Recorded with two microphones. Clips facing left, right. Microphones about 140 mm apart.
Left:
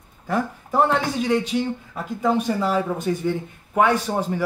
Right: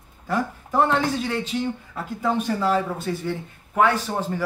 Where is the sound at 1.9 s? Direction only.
15° left (ahead or behind).